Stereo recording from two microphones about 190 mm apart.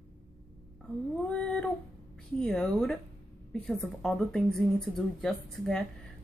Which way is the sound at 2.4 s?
5° left (ahead or behind).